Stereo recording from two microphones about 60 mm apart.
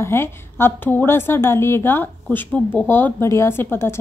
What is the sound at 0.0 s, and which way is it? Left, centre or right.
A woman's voice, left.